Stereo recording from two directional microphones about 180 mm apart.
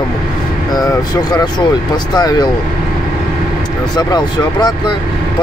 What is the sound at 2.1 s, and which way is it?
Speech, 25° left (ahead or behind).